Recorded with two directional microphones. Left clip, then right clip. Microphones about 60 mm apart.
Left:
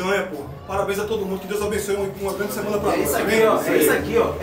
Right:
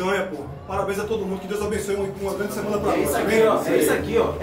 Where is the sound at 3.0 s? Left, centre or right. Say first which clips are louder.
Left 1 dB; right.